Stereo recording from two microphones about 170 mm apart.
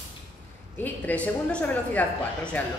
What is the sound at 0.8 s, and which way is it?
A woman's voice, 10° left (ahead or behind).